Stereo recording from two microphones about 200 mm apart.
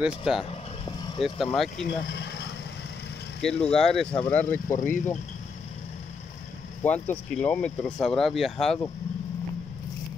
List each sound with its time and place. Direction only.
0.0 s speech: centre (ahead or behind)
2.0 s vehicle: 55° left (ahead or behind)
3.3 s speech: 5° left (ahead or behind)
6.8 s speech: 10° left (ahead or behind)